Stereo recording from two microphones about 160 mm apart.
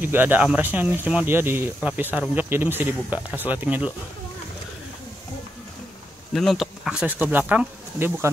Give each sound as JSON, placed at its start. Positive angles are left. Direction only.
{"t": 0.0, "sound": "speech", "side_deg": -10}
{"t": 6.3, "sound": "speech", "side_deg": 0}